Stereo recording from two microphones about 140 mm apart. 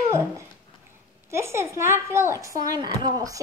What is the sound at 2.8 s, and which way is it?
Speech, 35° right (ahead or behind).